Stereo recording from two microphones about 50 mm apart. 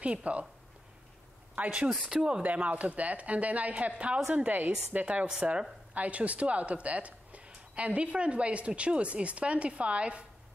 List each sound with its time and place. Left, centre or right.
0.0 s speech: right
1.5 s speech: right
2.4 s speech: right